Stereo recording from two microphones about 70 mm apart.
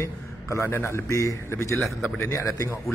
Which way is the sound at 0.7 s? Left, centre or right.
Left.